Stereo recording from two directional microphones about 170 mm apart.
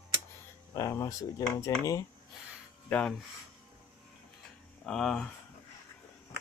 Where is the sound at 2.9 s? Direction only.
5° left (ahead or behind).